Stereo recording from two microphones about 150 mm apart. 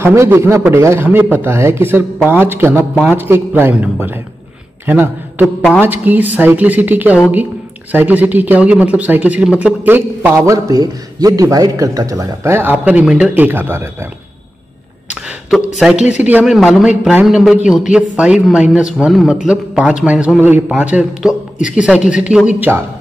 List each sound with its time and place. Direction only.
0.0 s a man's voice: 15° right (ahead or behind)
15.0 s a sound: 5° right (ahead or behind)
15.8 s a man's voice: 5° right (ahead or behind)